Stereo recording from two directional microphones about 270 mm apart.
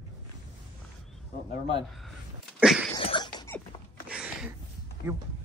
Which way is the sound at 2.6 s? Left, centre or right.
Centre.